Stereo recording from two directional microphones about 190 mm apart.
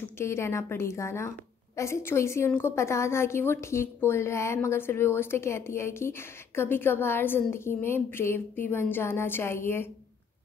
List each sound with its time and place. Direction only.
0.2 s a woman's voice: 15° left (ahead or behind)